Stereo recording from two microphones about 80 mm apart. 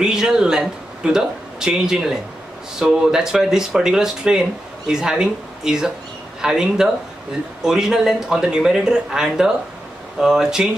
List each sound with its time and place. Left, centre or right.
0.0 s speech: centre